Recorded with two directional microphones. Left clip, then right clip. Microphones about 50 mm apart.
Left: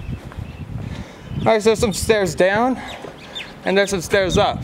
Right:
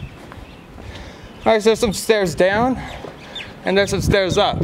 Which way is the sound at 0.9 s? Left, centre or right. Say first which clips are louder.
Left 3 dB; centre.